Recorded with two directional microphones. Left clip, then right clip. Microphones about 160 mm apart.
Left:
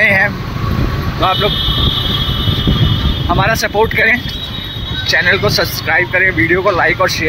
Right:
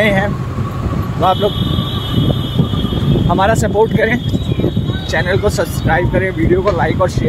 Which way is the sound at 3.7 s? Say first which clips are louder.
Left 2 dB; 20° right (ahead or behind).